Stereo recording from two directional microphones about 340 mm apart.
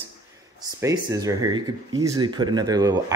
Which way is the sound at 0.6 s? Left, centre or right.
Centre.